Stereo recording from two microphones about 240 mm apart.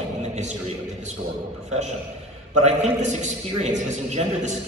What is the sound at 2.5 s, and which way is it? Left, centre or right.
A man's voice, right.